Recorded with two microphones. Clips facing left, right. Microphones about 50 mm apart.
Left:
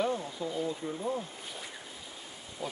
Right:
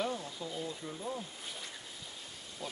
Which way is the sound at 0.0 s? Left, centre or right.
Centre.